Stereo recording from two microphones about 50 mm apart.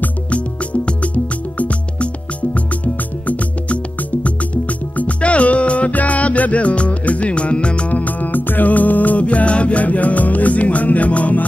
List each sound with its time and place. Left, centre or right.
0.8 s music: left